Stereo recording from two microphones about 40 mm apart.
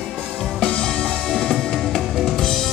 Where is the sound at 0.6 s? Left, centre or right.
Centre.